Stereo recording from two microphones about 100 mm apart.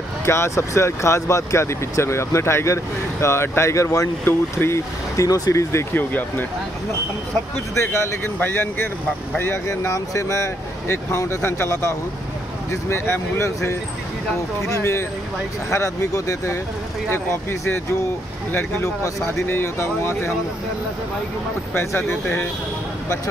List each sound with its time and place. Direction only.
0.2 s speech: 25° left (ahead or behind)
4.2 s speech: 20° left (ahead or behind)
7.8 s speech: 25° left (ahead or behind)
12.9 s speech: 25° left (ahead or behind)
21.7 s speech: 25° left (ahead or behind)